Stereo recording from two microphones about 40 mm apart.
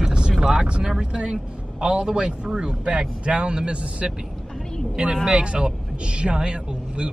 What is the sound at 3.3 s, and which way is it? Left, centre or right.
Speech, right.